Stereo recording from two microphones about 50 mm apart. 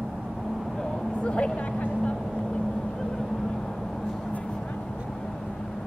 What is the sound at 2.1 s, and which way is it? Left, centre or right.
Vehicle, centre.